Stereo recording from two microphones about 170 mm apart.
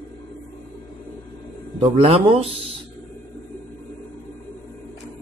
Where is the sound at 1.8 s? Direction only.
35° right (ahead or behind).